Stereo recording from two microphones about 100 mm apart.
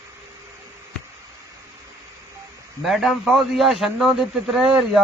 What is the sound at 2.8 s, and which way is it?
A man's voice, centre (ahead or behind).